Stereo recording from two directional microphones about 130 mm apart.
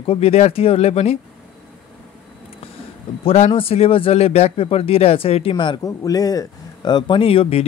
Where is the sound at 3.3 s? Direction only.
55° left (ahead or behind).